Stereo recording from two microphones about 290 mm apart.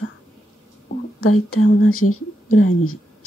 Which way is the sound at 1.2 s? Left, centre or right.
Left.